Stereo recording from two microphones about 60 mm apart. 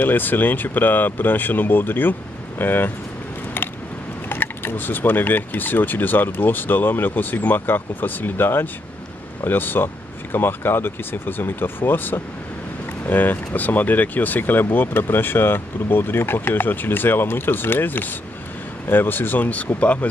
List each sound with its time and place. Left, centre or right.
0.0 s speech: left
4.3 s speech: left